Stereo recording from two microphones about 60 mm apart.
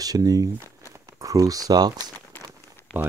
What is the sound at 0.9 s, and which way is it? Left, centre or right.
Speech, right.